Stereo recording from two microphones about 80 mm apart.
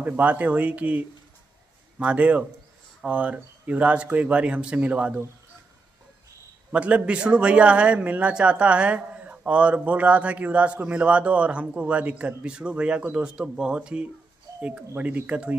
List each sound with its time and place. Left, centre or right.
0.0 s a man's voice: centre
6.7 s a man's voice: centre